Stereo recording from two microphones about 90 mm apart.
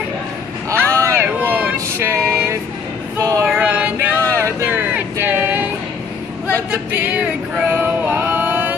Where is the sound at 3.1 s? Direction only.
40° right (ahead or behind).